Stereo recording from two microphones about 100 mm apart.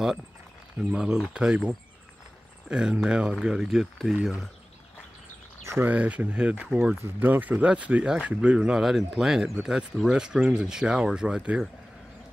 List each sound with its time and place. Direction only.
0.7 s speech: 10° right (ahead or behind)
5.6 s speech: 30° right (ahead or behind)
5.9 s speech: 15° right (ahead or behind)